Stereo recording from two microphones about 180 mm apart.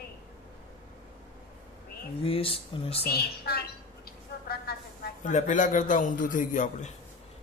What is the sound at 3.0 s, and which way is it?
Speech, 60° left (ahead or behind).